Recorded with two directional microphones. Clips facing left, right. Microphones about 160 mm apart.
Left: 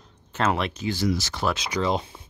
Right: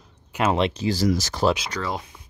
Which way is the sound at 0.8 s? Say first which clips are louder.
Right 3 dB; 40° right (ahead or behind).